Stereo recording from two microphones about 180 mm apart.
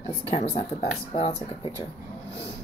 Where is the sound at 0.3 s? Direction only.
40° left (ahead or behind).